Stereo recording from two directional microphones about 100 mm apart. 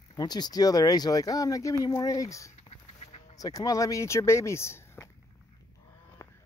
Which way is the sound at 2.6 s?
90° left.